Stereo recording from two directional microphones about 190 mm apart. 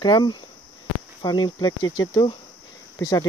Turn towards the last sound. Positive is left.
turn(degrees=20)  # may be behind; listen again after turning